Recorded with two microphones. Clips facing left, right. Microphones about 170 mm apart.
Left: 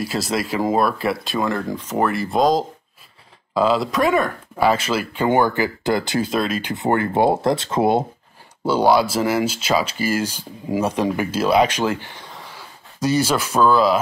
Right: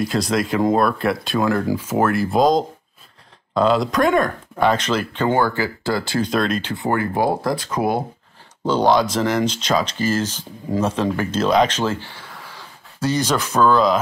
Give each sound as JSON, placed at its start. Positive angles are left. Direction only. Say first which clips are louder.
{"t": 0.0, "sound": "speech", "louder": "right 3 dB", "side_deg": 5}
{"t": 6.2, "sound": "speech", "louder": "right 1 dB", "side_deg": 5}
{"t": 6.7, "sound": "speech", "louder": "left 2 dB", "side_deg": 20}
{"t": 8.6, "sound": "speech", "louder": "even", "side_deg": 10}